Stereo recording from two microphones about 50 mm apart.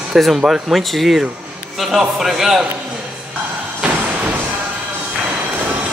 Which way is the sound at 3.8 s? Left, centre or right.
Right.